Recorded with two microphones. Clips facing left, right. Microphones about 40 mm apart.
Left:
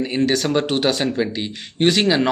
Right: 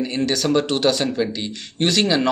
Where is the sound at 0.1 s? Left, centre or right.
Centre.